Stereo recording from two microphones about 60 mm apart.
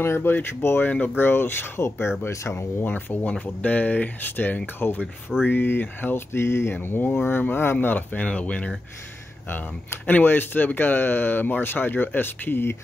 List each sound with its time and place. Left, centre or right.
0.0 s speech: left
0.8 s speech: left
2.8 s speech: left
10.0 s speech: left